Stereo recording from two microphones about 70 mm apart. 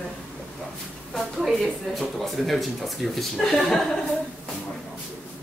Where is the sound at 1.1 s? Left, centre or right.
Centre.